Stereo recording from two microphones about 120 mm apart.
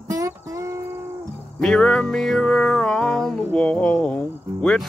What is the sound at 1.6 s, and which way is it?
Music, 5° left (ahead or behind).